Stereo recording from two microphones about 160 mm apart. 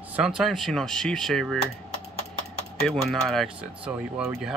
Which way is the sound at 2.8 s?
5° left (ahead or behind).